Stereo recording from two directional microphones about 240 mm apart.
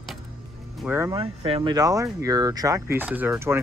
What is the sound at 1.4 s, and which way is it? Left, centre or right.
Speech, right.